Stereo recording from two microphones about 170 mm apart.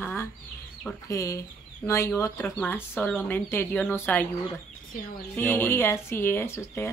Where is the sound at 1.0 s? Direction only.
20° left (ahead or behind).